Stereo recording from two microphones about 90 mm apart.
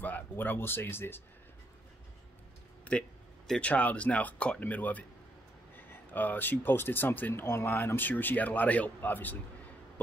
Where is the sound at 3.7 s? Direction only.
15° left (ahead or behind).